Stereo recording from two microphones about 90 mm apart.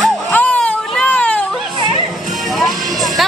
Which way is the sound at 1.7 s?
60° right (ahead or behind).